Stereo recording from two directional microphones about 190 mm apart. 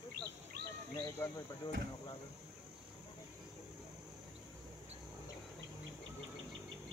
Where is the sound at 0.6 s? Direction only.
60° right (ahead or behind).